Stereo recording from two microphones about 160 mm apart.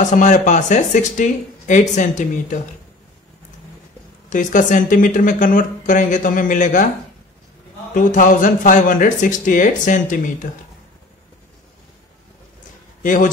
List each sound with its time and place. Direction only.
0.0 s speech: 50° left (ahead or behind)
4.3 s speech: 55° left (ahead or behind)
7.9 s speech: 55° left (ahead or behind)
13.0 s a man's voice: 55° left (ahead or behind)